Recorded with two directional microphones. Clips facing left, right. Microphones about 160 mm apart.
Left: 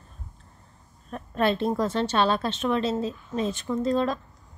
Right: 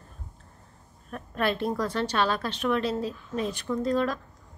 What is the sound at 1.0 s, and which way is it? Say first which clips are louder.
A woman's voice: left 3 dB; 25° left (ahead or behind).